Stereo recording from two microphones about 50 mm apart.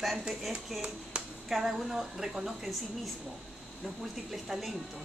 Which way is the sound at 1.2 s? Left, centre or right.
Right.